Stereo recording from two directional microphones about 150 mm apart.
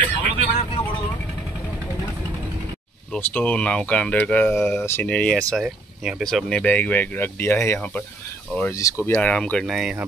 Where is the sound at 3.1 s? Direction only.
10° left (ahead or behind).